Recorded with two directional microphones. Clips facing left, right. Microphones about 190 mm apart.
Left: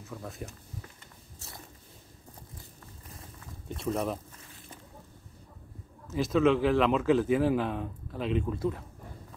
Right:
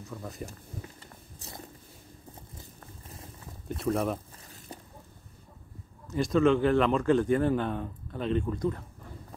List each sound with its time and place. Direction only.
0.0 s speech: centre (ahead or behind)
3.6 s speech: centre (ahead or behind)
4.5 s boat: 40° right (ahead or behind)
6.0 s speech: centre (ahead or behind)